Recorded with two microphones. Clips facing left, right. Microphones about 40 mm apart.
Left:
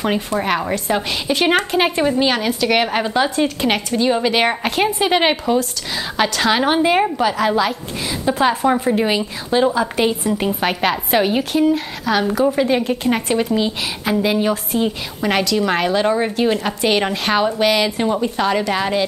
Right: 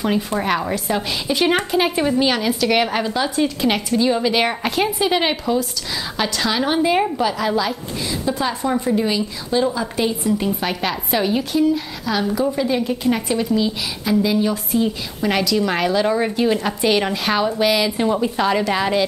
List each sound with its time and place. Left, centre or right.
0.4 s a woman's voice: centre; by 2.0 s left
2.0 s a woman's voice: centre
18.0 s a woman's voice: centre